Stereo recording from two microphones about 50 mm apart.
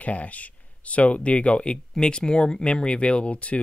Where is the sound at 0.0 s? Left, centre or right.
Left.